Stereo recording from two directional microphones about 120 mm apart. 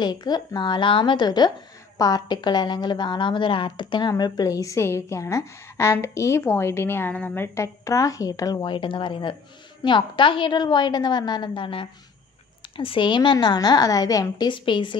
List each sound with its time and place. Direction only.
0.0 s a woman's voice: 35° left (ahead or behind)
8.7 s a woman's voice: 45° left (ahead or behind)
14.5 s speech: 40° left (ahead or behind)